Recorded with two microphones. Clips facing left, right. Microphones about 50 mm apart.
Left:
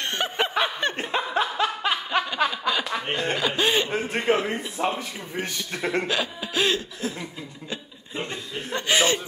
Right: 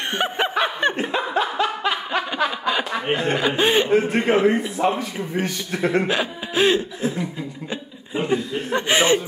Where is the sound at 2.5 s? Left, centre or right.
Right.